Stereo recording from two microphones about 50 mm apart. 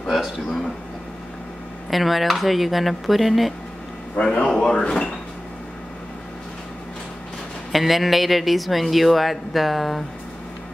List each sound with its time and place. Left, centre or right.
1.9 s a man's voice: centre
4.2 s speech: centre
7.7 s a man's voice: centre